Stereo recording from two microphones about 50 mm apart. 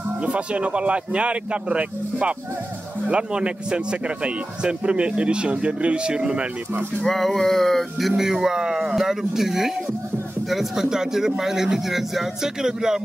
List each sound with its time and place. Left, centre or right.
0.2 s a man's voice: right
7.1 s a sound: centre
8.2 s a man's voice: centre